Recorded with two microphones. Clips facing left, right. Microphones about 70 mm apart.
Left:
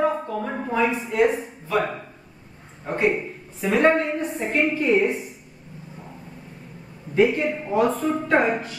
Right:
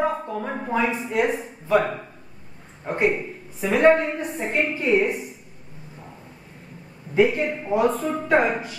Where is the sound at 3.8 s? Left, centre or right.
Centre.